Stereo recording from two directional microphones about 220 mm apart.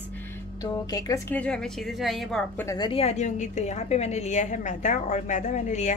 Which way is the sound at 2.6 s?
20° left (ahead or behind).